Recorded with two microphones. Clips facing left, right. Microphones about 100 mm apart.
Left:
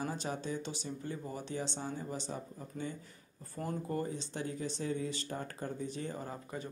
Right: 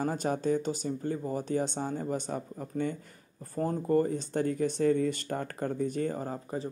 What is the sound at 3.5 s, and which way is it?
Speech, 40° right (ahead or behind).